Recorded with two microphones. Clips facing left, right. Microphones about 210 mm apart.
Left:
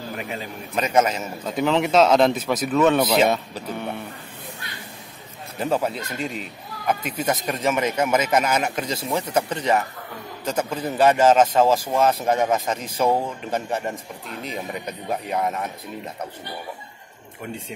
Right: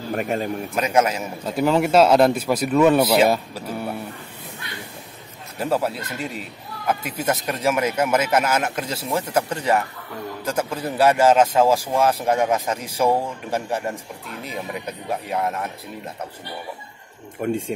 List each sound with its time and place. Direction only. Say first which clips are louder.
0.1 s a man's voice: right 10 dB; 50° right (ahead or behind)
0.7 s a man's voice: even; 10° right (ahead or behind)
5.6 s a man's voice: right 1 dB; 5° right (ahead or behind)
17.4 s a man's voice: right 10 dB; 50° right (ahead or behind)